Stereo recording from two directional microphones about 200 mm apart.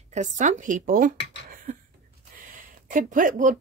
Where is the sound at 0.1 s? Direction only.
35° right (ahead or behind).